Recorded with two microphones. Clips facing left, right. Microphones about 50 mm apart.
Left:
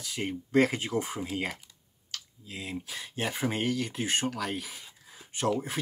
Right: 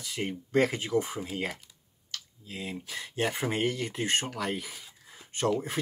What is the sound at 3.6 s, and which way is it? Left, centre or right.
Speech, right.